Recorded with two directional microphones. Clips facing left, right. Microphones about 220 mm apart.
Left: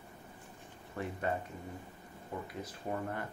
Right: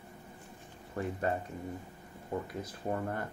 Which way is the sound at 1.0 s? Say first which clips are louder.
Right 4 dB; 35° right (ahead or behind).